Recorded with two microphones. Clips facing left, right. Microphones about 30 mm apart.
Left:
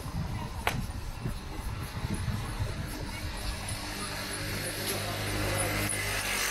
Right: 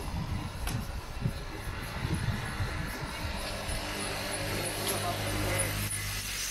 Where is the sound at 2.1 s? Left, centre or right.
Centre.